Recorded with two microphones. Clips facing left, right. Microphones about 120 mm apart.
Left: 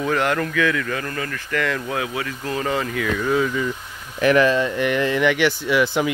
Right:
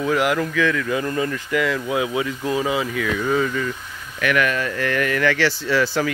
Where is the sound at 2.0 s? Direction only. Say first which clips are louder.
Right 4 dB; 20° right (ahead or behind); by 3.6 s centre (ahead or behind).